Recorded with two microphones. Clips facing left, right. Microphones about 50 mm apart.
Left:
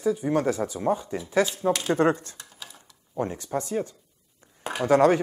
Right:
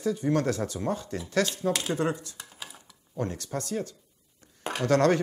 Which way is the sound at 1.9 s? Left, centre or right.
Left.